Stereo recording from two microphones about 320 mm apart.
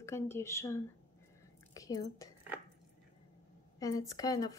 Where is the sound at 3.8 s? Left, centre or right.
Centre.